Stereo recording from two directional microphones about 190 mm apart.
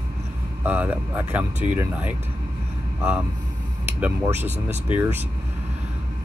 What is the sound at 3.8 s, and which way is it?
Speech, 10° right (ahead or behind).